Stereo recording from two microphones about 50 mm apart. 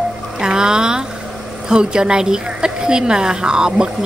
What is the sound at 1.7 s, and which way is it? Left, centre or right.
A woman's voice, centre.